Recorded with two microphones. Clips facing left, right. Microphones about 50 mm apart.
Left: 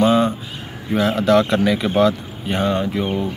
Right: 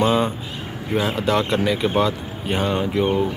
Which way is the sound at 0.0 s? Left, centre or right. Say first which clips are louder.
Left 3 dB; centre.